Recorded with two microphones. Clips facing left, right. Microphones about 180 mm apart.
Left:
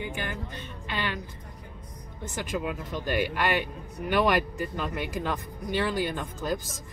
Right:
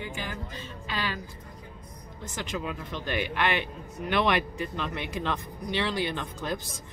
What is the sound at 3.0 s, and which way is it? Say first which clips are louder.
Speech: left 3 dB; 45° left (ahead or behind).